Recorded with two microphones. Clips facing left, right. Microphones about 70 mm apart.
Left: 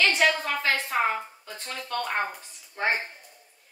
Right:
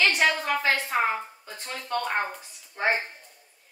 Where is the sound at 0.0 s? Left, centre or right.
Centre.